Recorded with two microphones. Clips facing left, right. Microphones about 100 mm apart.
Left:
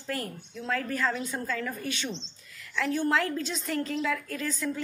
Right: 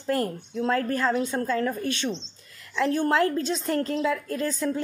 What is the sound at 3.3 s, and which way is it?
A woman's voice, 35° right (ahead or behind).